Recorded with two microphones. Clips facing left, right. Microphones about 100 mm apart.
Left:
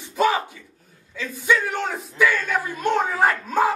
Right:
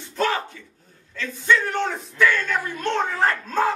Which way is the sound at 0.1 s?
10° left (ahead or behind).